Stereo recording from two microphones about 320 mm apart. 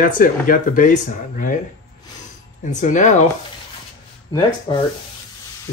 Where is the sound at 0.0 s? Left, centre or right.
Left.